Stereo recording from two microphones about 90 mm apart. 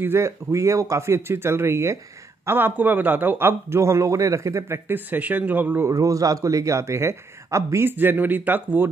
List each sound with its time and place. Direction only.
0.0 s a man's voice: 30° right (ahead or behind)
5.9 s speech: 40° right (ahead or behind)
7.9 s a man's voice: 20° right (ahead or behind)